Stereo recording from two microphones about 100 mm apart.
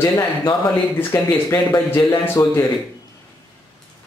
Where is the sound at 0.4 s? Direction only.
20° left (ahead or behind).